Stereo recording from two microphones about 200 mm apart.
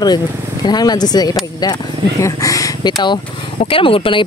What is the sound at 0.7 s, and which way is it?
Speech, 20° left (ahead or behind).